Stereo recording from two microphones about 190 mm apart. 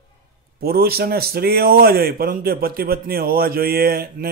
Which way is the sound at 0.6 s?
55° right (ahead or behind).